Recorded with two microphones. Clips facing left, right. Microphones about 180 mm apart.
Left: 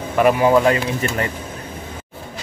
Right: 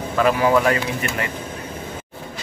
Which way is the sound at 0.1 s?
15° left (ahead or behind).